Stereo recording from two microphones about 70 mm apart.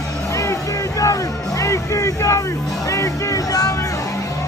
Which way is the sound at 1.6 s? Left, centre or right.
Left.